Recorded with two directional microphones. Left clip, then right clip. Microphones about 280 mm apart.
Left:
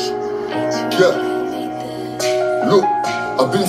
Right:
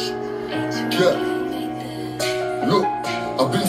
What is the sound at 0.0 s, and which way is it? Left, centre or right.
Speech, left.